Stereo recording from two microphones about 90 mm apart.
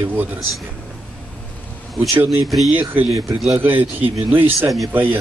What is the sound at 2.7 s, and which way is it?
Speech, 20° right (ahead or behind).